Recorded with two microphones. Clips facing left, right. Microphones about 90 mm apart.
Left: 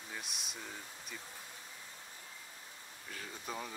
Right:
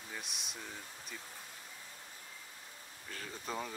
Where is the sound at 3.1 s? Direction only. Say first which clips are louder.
Right 2 dB; 50° right (ahead or behind).